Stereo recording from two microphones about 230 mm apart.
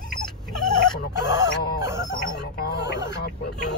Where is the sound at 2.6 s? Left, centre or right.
Left.